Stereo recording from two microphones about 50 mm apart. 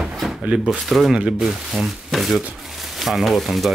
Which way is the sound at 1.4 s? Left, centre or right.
Centre.